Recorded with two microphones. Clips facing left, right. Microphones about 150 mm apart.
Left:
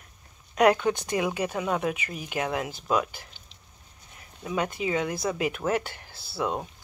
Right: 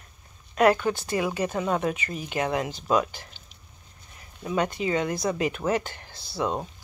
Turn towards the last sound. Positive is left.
turn(degrees=5)  # may be behind; listen again after turning